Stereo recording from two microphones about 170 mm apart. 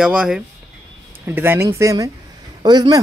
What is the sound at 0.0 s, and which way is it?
Speech, 5° right (ahead or behind).